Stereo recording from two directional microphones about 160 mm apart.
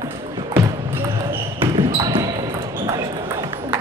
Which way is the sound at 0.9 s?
15° right (ahead or behind).